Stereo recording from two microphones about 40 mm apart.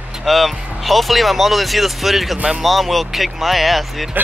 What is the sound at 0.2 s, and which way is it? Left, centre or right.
Speech, centre.